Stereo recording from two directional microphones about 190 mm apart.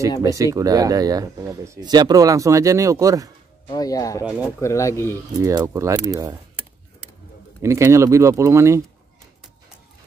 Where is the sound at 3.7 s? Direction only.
20° left (ahead or behind).